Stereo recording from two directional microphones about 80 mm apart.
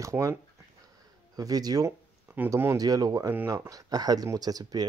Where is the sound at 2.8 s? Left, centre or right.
Right.